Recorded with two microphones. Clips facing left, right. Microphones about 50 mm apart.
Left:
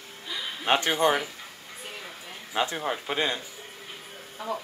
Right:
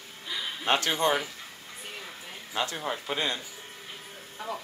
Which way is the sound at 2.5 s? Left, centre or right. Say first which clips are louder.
Left 3 dB; centre.